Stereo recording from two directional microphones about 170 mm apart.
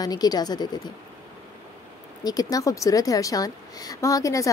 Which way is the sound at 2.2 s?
20° left (ahead or behind).